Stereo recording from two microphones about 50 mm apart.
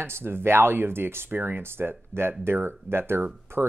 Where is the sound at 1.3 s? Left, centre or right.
Right.